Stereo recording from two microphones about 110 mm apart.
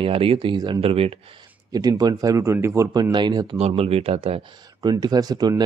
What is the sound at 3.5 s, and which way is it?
Speech, 70° right (ahead or behind).